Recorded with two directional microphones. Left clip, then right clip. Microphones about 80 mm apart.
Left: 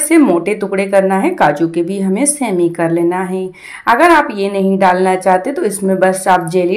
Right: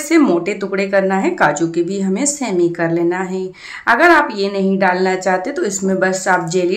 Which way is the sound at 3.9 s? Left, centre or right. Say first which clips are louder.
Left 2 dB; left.